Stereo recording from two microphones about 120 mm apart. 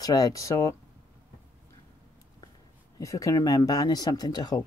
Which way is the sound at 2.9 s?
30° left (ahead or behind).